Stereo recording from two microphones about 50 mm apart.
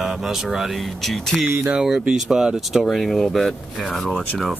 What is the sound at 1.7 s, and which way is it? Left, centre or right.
Speech, centre.